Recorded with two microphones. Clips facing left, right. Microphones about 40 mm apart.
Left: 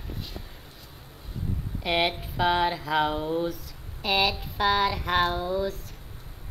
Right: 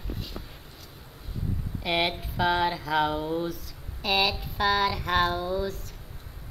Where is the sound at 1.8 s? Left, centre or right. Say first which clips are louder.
Left 1 dB; centre.